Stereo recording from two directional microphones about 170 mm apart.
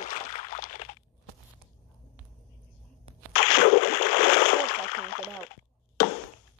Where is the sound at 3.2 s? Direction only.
40° left (ahead or behind).